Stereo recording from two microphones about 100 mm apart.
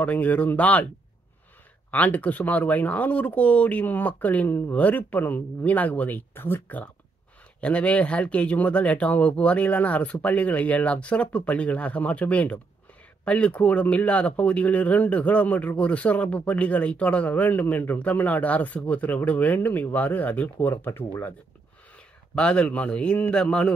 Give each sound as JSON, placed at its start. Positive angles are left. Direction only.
{"t": 0.0, "sound": "speech", "side_deg": 15}
{"t": 1.9, "sound": "speech", "side_deg": 15}
{"t": 22.3, "sound": "speech", "side_deg": 10}